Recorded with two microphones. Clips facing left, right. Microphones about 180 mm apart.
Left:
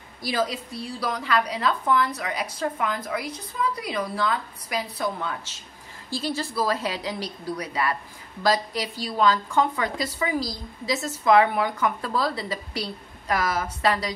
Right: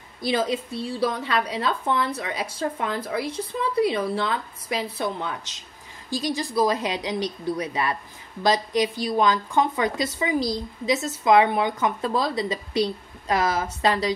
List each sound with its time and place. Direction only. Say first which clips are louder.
0.2 s a woman's voice: right 3 dB; 25° right (ahead or behind)